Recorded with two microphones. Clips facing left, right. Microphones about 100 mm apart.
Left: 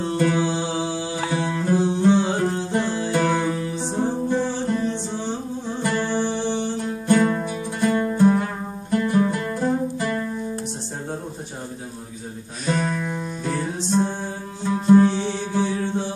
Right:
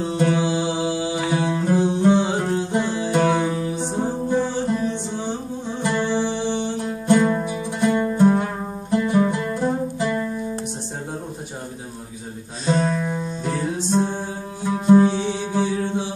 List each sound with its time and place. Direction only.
0.2 s music: 20° right (ahead or behind)
12.6 s music: 25° right (ahead or behind); by 16.1 s 10° right (ahead or behind)